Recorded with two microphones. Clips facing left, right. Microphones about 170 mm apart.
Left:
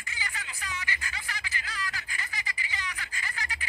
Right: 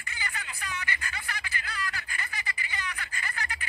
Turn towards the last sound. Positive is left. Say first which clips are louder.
# right 2 dB
turn(degrees=-55)  # may be behind; listen again after turning